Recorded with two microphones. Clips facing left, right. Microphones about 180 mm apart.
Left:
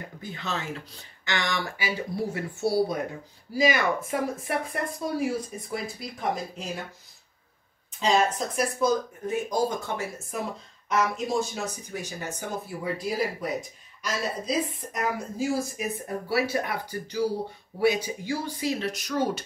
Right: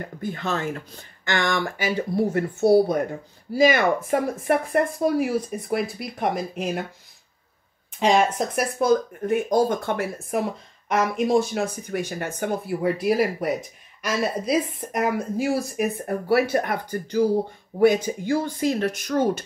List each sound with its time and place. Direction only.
0.0 s speech: 50° right (ahead or behind)
8.0 s speech: 65° right (ahead or behind)